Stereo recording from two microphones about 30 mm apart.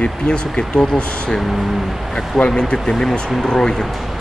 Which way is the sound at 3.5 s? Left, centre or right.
Left.